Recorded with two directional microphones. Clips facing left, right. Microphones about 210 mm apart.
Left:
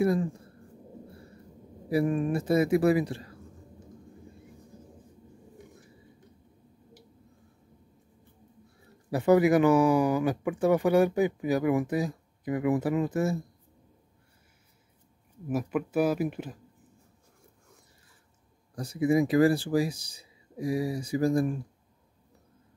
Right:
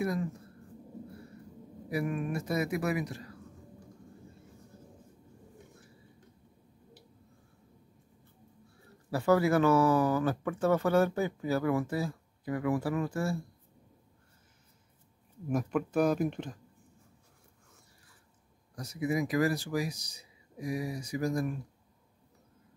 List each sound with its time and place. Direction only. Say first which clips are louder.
0.0 s a man's voice: left 7 dB; 30° left (ahead or behind)
1.9 s a man's voice: left 7 dB; 30° left (ahead or behind)
9.1 s speech: left 4 dB; 20° left (ahead or behind)
15.4 s speech: left 1 dB; 5° left (ahead or behind)
18.8 s a man's voice: left 7 dB; 30° left (ahead or behind)